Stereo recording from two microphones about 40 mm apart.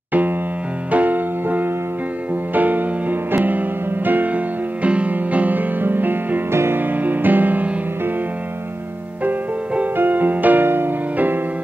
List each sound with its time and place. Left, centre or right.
0.9 s music: right
4.8 s music: right
6.5 s music: right
7.1 s music: right
9.9 s music: right